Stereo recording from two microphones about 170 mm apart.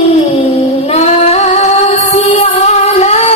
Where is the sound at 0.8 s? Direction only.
40° left (ahead or behind).